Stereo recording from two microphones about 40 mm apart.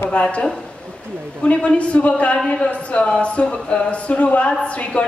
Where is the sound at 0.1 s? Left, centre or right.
Left.